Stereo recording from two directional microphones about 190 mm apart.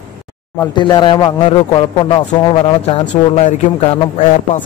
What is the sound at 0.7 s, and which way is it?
Speech, 25° left (ahead or behind).